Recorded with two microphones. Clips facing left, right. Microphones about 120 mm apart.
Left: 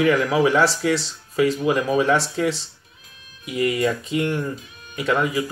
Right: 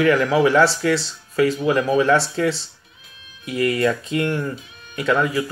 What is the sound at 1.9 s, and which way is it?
Speech, 15° left (ahead or behind).